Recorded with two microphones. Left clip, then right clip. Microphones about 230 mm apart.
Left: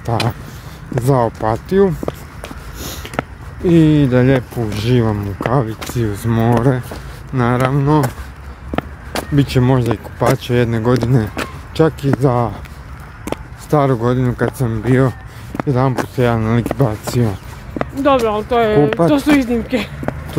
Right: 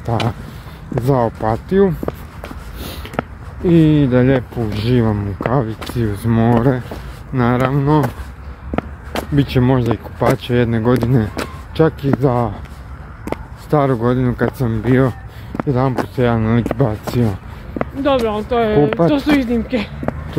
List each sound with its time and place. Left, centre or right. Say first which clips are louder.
0.0 s speech: left 1 dB; centre
18.0 s speech: left 3 dB; centre